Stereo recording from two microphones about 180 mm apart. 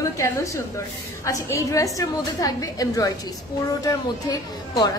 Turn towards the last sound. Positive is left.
turn(degrees=20)  # may be behind; listen again after turning